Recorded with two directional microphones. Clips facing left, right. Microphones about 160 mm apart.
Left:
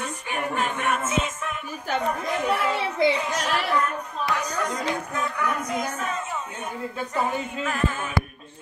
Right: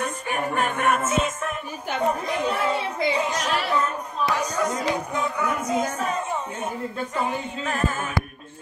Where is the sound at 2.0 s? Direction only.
20° right (ahead or behind).